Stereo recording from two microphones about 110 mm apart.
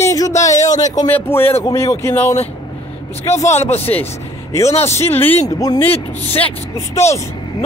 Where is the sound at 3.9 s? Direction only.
25° left (ahead or behind).